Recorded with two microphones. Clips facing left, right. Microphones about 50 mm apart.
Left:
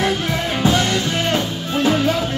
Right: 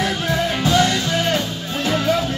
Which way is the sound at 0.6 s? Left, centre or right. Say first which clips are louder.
Even; left.